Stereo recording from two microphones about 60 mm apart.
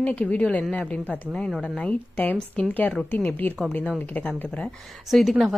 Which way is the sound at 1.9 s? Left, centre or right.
Left.